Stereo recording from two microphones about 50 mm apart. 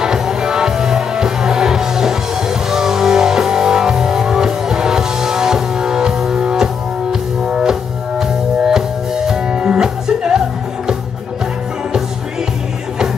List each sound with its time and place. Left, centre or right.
0.0 s music: centre